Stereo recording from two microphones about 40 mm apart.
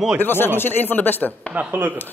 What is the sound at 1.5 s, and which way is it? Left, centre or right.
Speech, right.